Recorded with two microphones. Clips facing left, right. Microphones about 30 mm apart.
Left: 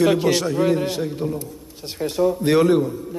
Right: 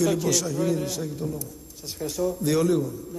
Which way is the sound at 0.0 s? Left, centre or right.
Left.